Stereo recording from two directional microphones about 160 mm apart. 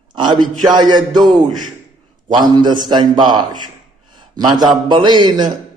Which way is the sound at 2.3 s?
25° right (ahead or behind).